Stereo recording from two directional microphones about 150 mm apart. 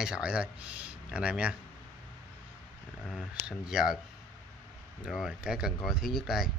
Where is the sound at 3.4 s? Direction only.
5° right (ahead or behind).